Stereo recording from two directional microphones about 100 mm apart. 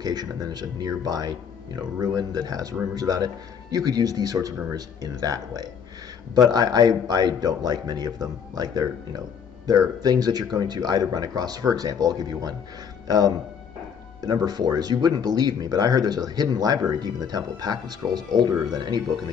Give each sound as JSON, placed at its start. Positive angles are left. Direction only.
{"t": 0.0, "sound": "a man's voice", "side_deg": -40}
{"t": 14.2, "sound": "a man's voice", "side_deg": -40}